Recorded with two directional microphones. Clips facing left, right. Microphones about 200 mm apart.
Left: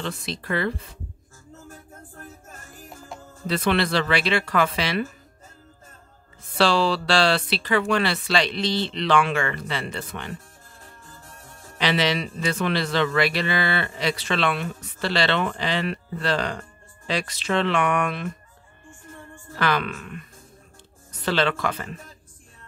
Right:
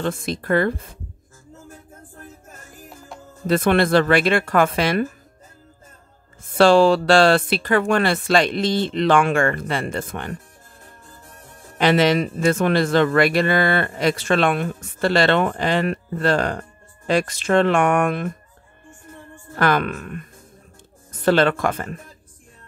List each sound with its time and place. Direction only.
0.0 s a man's voice: 50° right (ahead or behind)
3.4 s a man's voice: 50° right (ahead or behind)
6.4 s a man's voice: 50° right (ahead or behind)
11.8 s a man's voice: 50° right (ahead or behind)
19.5 s a man's voice: 50° right (ahead or behind)